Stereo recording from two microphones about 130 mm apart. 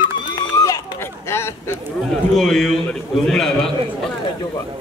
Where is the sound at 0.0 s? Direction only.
35° left (ahead or behind).